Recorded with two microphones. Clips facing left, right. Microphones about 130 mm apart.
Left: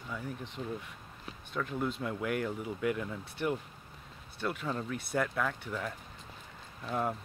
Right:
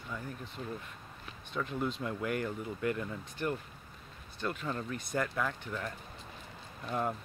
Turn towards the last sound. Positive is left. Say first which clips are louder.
# left 1 dB
turn(degrees=0)  # may be behind; listen again after turning